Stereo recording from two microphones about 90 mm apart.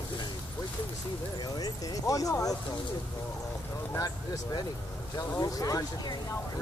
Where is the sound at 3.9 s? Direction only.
40° left (ahead or behind).